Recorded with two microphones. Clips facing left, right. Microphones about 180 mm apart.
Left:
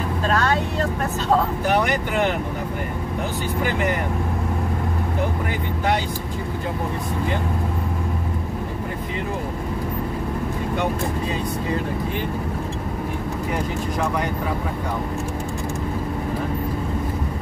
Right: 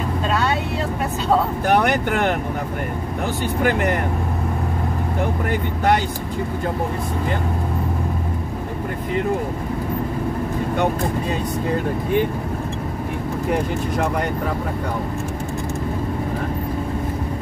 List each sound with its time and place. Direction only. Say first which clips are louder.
1.7 s speech: right 5 dB; 55° right (ahead or behind)
3.6 s speech: right 4 dB; 55° right (ahead or behind)